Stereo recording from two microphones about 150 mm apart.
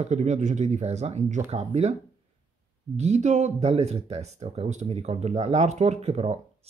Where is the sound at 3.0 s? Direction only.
50° right (ahead or behind).